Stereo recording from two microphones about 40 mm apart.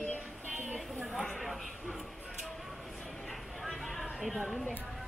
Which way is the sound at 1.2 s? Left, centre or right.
Centre.